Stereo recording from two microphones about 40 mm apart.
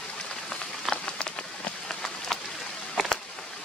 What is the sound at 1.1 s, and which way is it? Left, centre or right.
Rain on surface, left.